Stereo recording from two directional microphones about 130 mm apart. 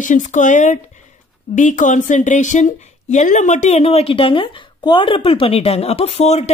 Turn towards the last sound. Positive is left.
turn(degrees=55)  # may be behind; listen again after turning